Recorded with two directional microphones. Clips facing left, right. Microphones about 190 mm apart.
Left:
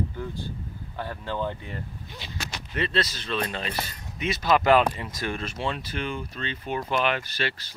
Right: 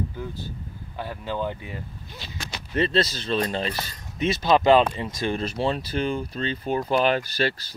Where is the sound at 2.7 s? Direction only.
30° right (ahead or behind).